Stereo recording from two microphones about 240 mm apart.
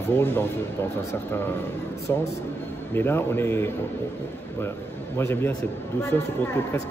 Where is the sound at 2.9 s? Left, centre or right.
Centre.